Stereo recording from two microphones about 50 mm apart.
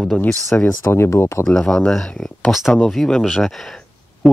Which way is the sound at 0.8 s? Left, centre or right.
Left.